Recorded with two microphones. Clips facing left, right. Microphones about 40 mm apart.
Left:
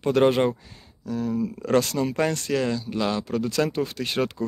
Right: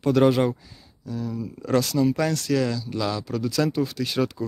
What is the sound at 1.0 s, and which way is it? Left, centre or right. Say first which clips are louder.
Speech: left 4 dB; left.